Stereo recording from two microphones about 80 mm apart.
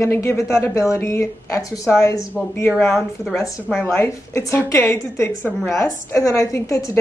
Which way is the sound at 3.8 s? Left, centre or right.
Left.